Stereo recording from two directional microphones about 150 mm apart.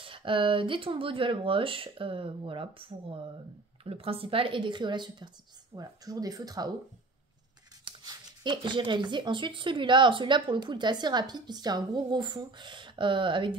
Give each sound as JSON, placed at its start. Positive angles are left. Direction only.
{"t": 0.0, "sound": "speech", "side_deg": -35}
{"t": 7.8, "sound": "speech", "side_deg": -30}